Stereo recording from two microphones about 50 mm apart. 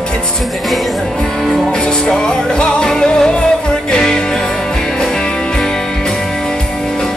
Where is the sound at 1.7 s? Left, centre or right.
Centre.